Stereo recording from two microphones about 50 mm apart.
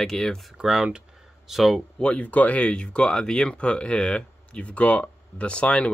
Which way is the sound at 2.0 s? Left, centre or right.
Left.